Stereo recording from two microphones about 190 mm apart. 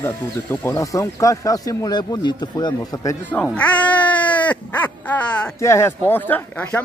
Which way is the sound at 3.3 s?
5° left (ahead or behind).